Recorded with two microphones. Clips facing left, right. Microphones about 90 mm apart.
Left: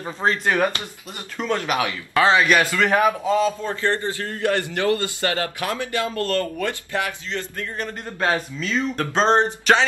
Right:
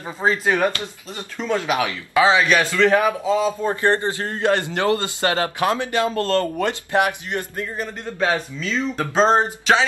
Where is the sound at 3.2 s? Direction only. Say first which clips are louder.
Right 1 dB; 10° right (ahead or behind).